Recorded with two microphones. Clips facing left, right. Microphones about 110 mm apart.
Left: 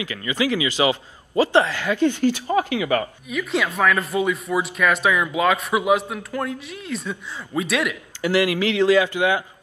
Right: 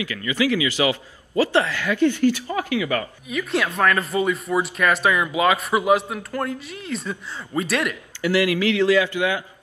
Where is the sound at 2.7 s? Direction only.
25° left (ahead or behind).